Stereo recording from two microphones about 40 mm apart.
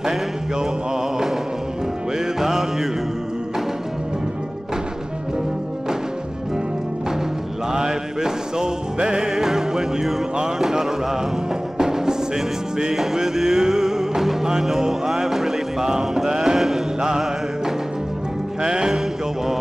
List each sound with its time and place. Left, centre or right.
0.0 s a sound: centre
2.1 s music: centre
7.7 s music: centre
9.3 s music: centre
10.6 s a sound: centre
11.8 s music: centre
18.6 s music: centre